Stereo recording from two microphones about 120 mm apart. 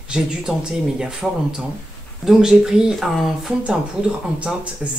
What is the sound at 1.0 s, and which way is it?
Speech, 5° right (ahead or behind).